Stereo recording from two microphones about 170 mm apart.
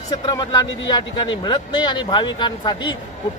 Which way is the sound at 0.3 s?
20° left (ahead or behind).